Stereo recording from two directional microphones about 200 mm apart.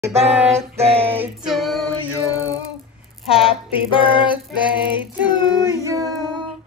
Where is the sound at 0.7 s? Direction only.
30° right (ahead or behind).